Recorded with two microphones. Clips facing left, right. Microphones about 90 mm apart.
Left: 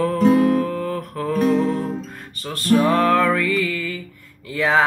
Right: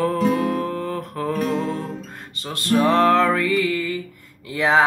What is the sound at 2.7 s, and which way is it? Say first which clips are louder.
Music: right 1 dB; 25° right (ahead or behind).